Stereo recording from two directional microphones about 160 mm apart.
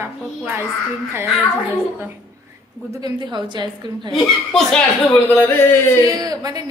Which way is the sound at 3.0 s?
30° right (ahead or behind).